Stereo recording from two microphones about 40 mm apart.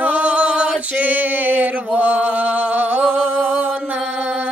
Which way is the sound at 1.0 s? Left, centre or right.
Right.